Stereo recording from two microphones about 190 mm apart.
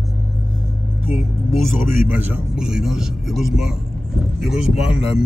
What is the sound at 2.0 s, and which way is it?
A man's voice, 10° right (ahead or behind).